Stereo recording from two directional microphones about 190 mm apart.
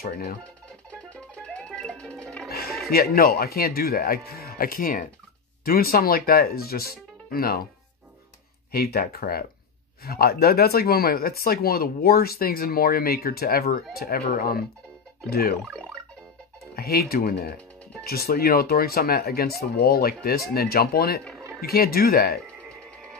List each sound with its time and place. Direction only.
0.0 s speech: 50° left (ahead or behind)
0.9 s music: 5° left (ahead or behind)
2.9 s speech: 55° left (ahead or behind)
8.7 s speech: 55° left (ahead or behind)
15.6 s music: 5° left (ahead or behind)
16.7 s speech: 55° left (ahead or behind)